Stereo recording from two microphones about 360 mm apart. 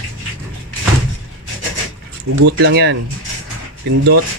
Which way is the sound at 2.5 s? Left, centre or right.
Right.